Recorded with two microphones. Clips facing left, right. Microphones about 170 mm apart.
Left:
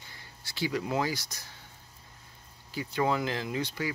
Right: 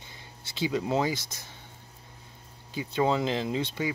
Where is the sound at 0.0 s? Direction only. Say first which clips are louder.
Right 3 dB; 20° right (ahead or behind).